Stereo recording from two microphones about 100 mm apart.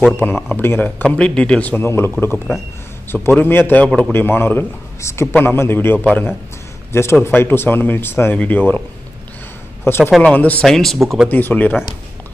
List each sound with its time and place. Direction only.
0.5 s a man's voice: 20° left (ahead or behind)
9.8 s a man's voice: 25° left (ahead or behind)
10.6 s speech: 5° left (ahead or behind)
11.2 s a man's voice: 20° left (ahead or behind)